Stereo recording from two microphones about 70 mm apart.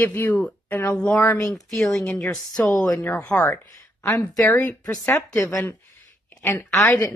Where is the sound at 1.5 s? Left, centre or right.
Centre.